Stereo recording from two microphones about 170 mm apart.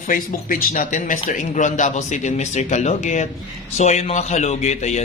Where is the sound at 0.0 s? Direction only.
50° left (ahead or behind).